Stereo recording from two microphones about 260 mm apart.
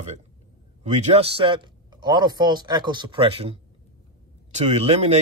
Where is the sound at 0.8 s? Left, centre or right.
Right.